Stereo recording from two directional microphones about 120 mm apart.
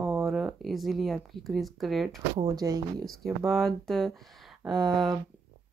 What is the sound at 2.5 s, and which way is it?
Speech, 30° right (ahead or behind).